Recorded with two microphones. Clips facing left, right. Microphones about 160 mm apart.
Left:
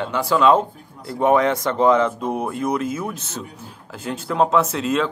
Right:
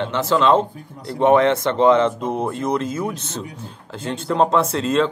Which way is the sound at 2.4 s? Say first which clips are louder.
Right 1 dB; 25° right (ahead or behind).